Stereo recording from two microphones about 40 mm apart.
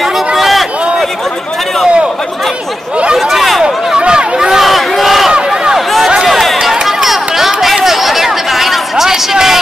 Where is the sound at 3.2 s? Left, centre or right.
Centre.